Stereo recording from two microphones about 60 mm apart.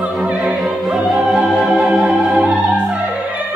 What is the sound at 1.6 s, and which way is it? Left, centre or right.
Music, centre.